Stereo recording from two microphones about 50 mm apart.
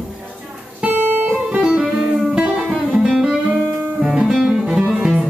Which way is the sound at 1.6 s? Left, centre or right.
Centre.